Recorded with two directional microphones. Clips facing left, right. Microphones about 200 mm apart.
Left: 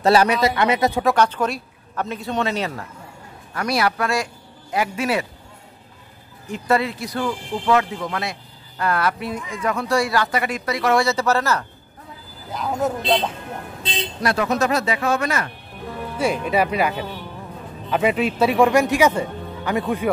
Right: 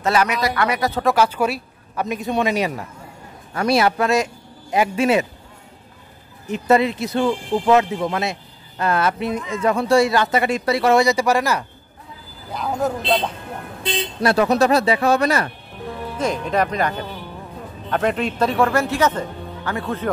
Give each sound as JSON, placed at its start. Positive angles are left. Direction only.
{"t": 0.0, "sound": "speech", "side_deg": 30}
{"t": 1.0, "sound": "speech", "side_deg": -5}
{"t": 3.5, "sound": "speech", "side_deg": -25}
{"t": 6.4, "sound": "speech", "side_deg": -20}
{"t": 11.1, "sound": "speech", "side_deg": -15}
{"t": 12.4, "sound": "speech", "side_deg": 0}
{"t": 14.2, "sound": "speech", "side_deg": -30}
{"t": 16.2, "sound": "speech", "side_deg": 10}